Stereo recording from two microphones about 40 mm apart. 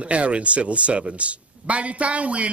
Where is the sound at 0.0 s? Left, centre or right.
Right.